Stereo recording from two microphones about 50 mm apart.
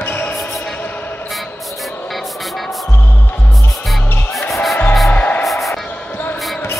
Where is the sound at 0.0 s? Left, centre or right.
Left.